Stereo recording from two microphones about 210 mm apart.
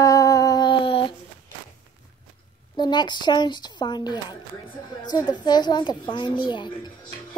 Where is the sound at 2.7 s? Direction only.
20° left (ahead or behind).